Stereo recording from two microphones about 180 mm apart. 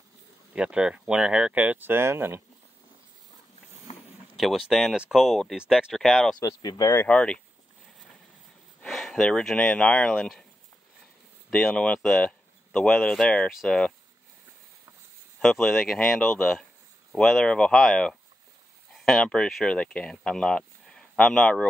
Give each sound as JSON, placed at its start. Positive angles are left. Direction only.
{"t": 0.5, "sound": "speech", "side_deg": -5}
{"t": 3.9, "sound": "a sound", "side_deg": 35}
{"t": 4.4, "sound": "speech", "side_deg": 0}
{"t": 6.4, "sound": "speech", "side_deg": 20}
{"t": 8.8, "sound": "speech", "side_deg": 0}
{"t": 11.5, "sound": "speech", "side_deg": 5}
{"t": 15.4, "sound": "speech", "side_deg": 0}